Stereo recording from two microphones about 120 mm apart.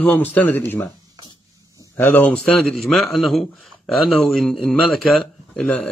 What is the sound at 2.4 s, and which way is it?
A man's voice, 5° left (ahead or behind).